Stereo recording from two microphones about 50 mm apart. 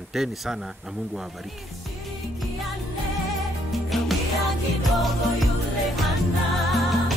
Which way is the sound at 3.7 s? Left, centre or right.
Centre.